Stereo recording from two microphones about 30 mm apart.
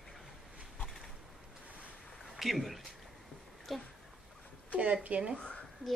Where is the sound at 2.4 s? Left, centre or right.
Centre.